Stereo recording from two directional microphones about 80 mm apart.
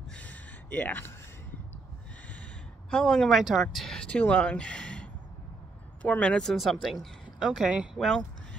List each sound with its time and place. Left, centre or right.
0.1 s a sound: centre
2.9 s speech: centre
8.0 s speech: centre